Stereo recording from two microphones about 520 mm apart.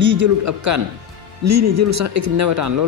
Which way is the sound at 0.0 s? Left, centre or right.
Right.